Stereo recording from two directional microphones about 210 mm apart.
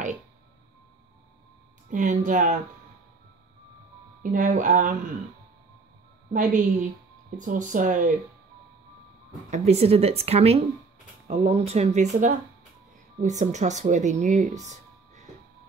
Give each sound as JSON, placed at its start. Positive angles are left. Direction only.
{"t": 1.9, "sound": "speech", "side_deg": -35}
{"t": 4.2, "sound": "speech", "side_deg": -40}
{"t": 6.3, "sound": "speech", "side_deg": -40}
{"t": 9.5, "sound": "a woman's voice", "side_deg": -30}